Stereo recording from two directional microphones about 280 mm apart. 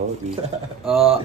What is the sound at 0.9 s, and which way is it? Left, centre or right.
Speech, centre.